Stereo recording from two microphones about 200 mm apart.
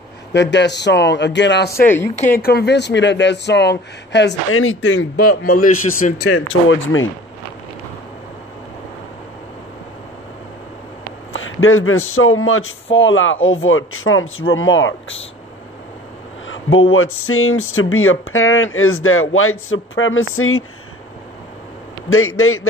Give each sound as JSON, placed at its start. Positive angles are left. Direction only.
{"t": 0.3, "sound": "speech", "side_deg": 60}
{"t": 2.1, "sound": "speech", "side_deg": 40}
{"t": 5.4, "sound": "a man's voice", "side_deg": 45}
{"t": 6.1, "sound": "speech", "side_deg": 90}
{"t": 11.3, "sound": "a man's voice", "side_deg": 85}
{"t": 12.9, "sound": "speech", "side_deg": 70}
{"t": 16.4, "sound": "speech", "side_deg": 85}
{"t": 22.1, "sound": "speech", "side_deg": 90}